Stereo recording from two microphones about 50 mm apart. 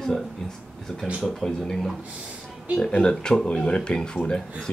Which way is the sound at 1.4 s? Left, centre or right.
Centre.